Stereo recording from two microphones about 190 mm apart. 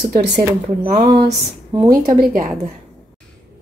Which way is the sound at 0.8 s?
25° right (ahead or behind).